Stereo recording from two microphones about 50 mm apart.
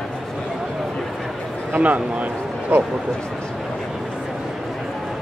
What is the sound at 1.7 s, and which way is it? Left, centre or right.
A man's voice, right.